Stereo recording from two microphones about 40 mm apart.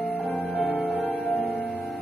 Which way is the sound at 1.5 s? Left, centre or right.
Left.